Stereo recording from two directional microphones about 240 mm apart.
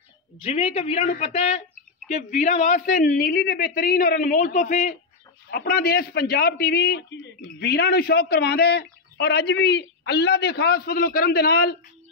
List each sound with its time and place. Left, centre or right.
0.4 s a man's voice: left